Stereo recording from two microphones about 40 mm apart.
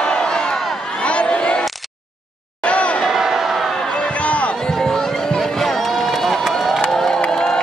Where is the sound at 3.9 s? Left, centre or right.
Left.